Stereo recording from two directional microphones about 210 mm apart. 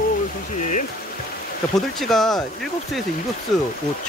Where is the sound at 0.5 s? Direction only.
35° left (ahead or behind).